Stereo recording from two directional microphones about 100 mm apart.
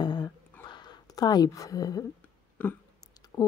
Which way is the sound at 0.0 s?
45° left (ahead or behind).